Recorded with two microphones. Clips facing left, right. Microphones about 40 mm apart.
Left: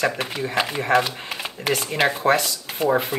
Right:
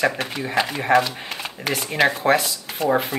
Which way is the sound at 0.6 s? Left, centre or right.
Centre.